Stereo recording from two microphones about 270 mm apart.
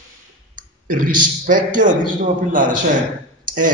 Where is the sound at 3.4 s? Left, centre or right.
Right.